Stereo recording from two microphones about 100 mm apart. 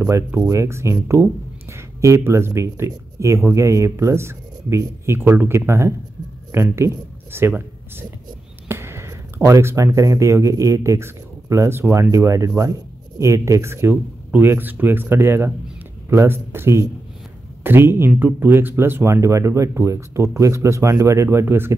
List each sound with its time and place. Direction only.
0.5 s speech: 30° right (ahead or behind)